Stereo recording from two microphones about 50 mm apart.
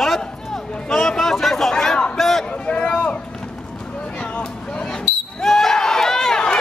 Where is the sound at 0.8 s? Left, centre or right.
Centre.